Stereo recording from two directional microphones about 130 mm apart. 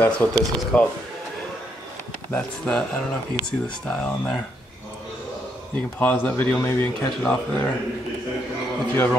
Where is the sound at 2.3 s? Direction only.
5° left (ahead or behind).